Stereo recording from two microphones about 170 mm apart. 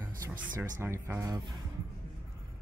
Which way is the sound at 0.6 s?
15° right (ahead or behind).